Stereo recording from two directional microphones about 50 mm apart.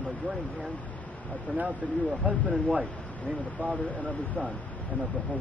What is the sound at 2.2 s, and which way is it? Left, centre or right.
Speech, right.